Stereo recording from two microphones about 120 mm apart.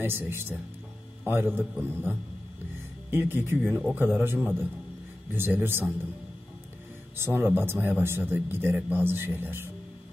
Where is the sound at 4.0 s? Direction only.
15° right (ahead or behind).